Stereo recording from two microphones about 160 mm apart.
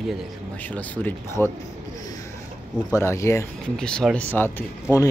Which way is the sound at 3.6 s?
5° left (ahead or behind).